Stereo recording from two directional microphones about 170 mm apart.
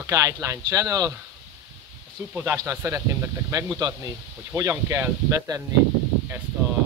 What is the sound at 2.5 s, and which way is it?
Speech, 15° right (ahead or behind).